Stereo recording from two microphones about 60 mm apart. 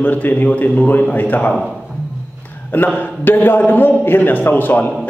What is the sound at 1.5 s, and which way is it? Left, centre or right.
Speech, centre.